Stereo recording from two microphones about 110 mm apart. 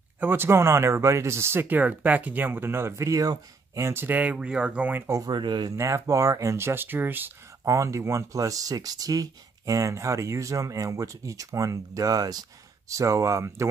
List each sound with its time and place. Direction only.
0.2 s speech: 20° right (ahead or behind)
5.2 s speech: 45° right (ahead or behind)
5.7 s speech: 30° right (ahead or behind)
7.6 s speech: 30° right (ahead or behind)